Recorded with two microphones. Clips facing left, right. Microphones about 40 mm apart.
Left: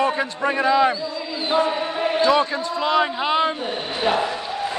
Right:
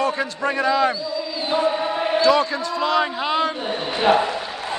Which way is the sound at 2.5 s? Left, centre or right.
Centre.